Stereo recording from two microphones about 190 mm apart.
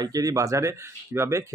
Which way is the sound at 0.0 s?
20° right (ahead or behind).